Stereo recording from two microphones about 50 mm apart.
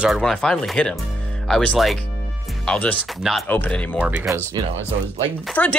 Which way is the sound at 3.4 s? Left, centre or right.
Left.